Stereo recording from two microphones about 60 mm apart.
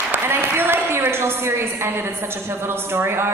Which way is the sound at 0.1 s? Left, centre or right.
Right.